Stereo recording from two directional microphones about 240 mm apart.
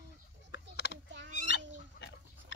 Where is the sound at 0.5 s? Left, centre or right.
Left.